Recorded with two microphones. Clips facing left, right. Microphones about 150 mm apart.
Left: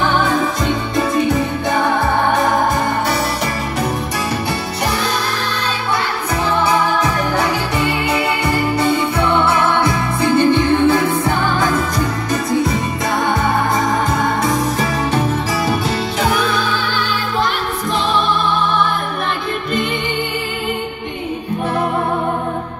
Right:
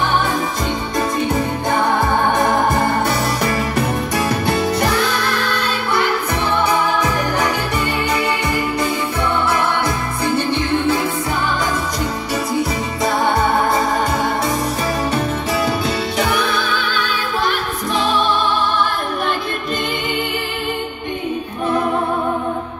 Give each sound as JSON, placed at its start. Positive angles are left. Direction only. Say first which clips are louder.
{"t": 10.5, "sound": "music", "louder": "left 5 dB", "side_deg": 60}